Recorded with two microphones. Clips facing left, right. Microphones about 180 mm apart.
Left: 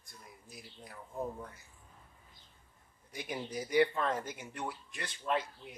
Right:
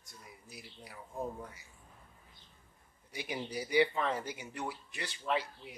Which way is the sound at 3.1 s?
5° right (ahead or behind).